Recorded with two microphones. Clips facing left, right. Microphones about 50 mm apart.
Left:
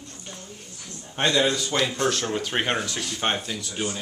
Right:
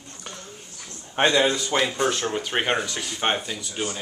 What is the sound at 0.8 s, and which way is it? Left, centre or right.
A woman's voice, right.